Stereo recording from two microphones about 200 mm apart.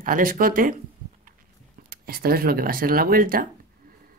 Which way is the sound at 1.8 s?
50° right (ahead or behind).